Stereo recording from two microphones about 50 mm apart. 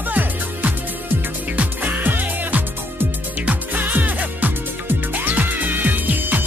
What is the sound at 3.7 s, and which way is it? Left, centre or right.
Music, right.